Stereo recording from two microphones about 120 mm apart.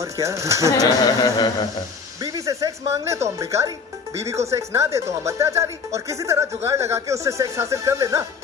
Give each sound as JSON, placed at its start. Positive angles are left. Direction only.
{"t": 0.0, "sound": "speech", "side_deg": -25}
{"t": 0.8, "sound": "a sound", "side_deg": 35}
{"t": 2.2, "sound": "speech", "side_deg": -30}